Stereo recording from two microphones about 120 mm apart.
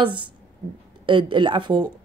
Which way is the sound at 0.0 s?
40° right (ahead or behind).